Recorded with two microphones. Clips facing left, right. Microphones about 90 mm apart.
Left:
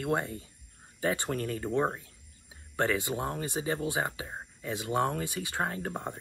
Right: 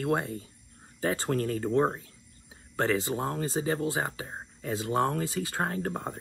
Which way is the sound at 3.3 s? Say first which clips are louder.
Right 3 dB; 30° right (ahead or behind).